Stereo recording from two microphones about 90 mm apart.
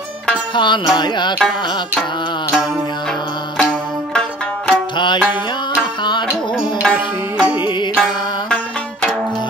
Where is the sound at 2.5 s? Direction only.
Centre (ahead or behind).